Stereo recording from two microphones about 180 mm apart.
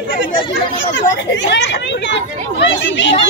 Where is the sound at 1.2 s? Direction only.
80° left.